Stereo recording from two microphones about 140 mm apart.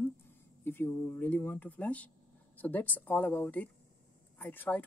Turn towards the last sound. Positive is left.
turn(degrees=10)  # may be behind; listen again after turning